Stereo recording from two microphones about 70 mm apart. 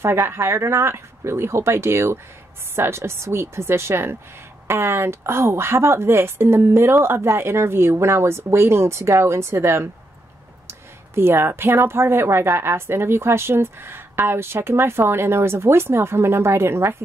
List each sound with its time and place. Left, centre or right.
0.0 s speech: right